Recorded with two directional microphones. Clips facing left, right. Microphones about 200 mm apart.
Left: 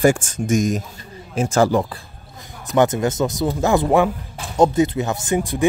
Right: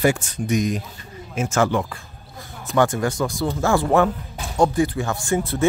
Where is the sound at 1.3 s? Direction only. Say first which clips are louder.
Left 4 dB; 35° left (ahead or behind).